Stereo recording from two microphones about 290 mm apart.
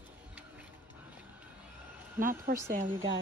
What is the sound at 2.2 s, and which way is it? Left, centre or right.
Speech, right.